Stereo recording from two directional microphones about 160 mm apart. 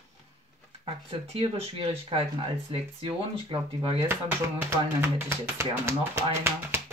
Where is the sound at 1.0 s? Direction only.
40° right (ahead or behind).